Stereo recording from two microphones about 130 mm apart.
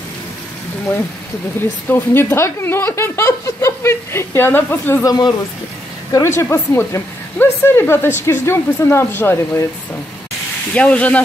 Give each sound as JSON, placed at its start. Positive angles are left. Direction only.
{"t": 1.9, "sound": "speech", "side_deg": 15}
{"t": 5.0, "sound": "speech", "side_deg": 30}
{"t": 6.1, "sound": "speech", "side_deg": 20}
{"t": 10.7, "sound": "speech", "side_deg": 10}